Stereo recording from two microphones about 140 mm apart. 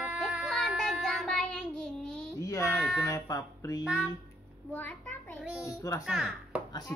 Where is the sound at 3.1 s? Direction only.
20° left (ahead or behind).